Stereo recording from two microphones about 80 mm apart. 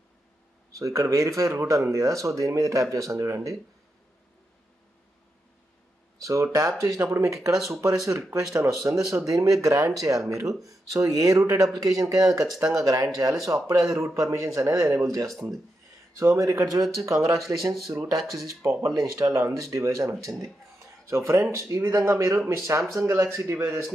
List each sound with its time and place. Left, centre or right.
0.7 s speech: right
6.2 s speech: right